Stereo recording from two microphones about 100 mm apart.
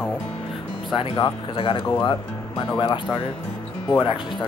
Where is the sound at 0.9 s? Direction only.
50° left (ahead or behind).